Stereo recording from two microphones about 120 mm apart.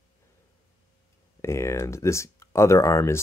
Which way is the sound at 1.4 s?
25° left (ahead or behind).